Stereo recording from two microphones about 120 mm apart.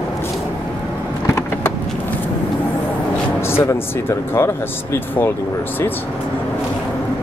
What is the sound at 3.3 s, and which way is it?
Speech, 20° left (ahead or behind).